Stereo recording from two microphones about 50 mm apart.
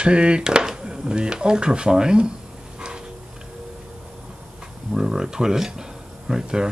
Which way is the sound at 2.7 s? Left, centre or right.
Centre.